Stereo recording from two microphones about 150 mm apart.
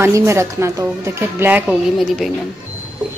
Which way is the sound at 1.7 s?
Centre (ahead or behind).